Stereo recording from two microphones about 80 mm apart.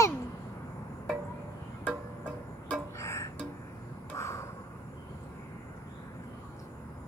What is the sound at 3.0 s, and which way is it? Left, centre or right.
Music, left.